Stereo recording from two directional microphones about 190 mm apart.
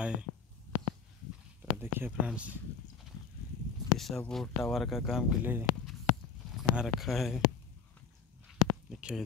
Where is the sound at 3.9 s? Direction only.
Centre (ahead or behind).